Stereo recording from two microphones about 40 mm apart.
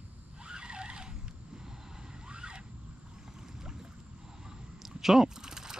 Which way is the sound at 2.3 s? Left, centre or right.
Right.